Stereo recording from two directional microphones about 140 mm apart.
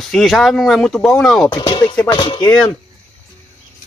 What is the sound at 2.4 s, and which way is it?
Speech, 5° left (ahead or behind).